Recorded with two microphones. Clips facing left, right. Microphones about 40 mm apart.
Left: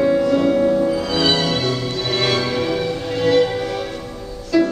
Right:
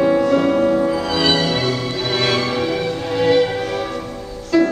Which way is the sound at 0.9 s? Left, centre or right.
Centre.